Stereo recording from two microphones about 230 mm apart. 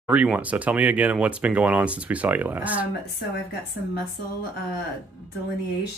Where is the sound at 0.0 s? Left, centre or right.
Centre.